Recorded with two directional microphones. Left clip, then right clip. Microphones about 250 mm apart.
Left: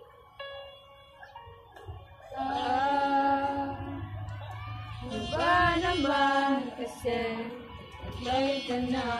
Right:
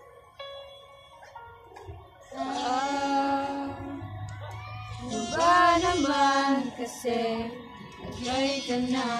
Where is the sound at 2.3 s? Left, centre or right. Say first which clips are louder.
Even; right.